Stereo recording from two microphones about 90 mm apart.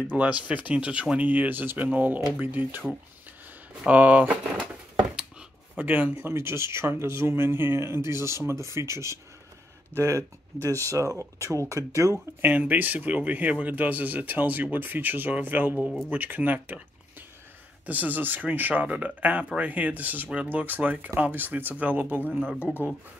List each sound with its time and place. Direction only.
0.1 s speech: 15° right (ahead or behind)
3.8 s speech: 15° right (ahead or behind); by 12.4 s 35° right (ahead or behind)
12.4 s speech: 20° right (ahead or behind)
17.8 s speech: 20° right (ahead or behind)
22.6 s speech: 20° left (ahead or behind)